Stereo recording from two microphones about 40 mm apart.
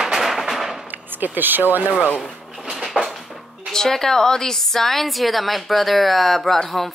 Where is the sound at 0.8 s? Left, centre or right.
Right.